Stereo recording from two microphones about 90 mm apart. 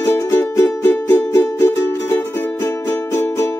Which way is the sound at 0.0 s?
30° left (ahead or behind).